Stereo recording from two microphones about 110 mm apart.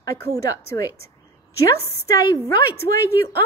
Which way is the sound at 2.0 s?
30° left (ahead or behind).